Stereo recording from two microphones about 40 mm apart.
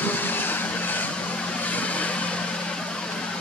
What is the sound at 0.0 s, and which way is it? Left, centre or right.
Vehicle, left.